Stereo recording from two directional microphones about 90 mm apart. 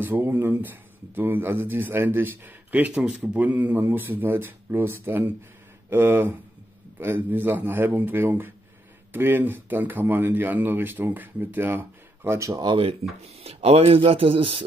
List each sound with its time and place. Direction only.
0.0 s speech: 25° right (ahead or behind)
12.6 s speech: 80° right
13.4 s speech: 90° right